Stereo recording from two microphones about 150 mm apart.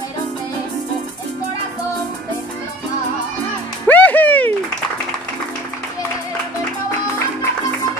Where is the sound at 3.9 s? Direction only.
10° left (ahead or behind).